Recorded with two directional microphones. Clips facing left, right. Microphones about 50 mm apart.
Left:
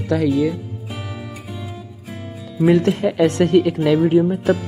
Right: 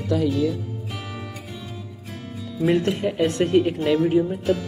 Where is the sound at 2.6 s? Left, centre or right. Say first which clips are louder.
Left 5 dB; left.